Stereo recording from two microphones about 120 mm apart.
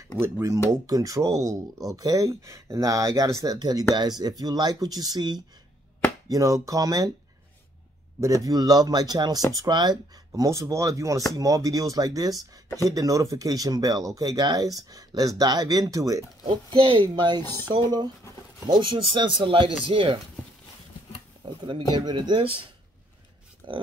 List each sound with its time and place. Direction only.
0.2 s speech: 25° right (ahead or behind)
8.2 s speech: 30° right (ahead or behind)
16.4 s speech: 45° right (ahead or behind)
18.7 s speech: 45° right (ahead or behind)
21.5 s speech: 40° right (ahead or behind)
23.6 s speech: 45° right (ahead or behind)